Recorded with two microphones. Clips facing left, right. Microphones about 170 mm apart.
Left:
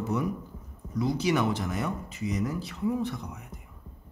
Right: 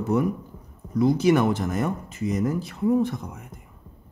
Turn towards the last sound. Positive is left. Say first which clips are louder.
# right 8 dB
turn(degrees=-50)  # may be behind; listen again after turning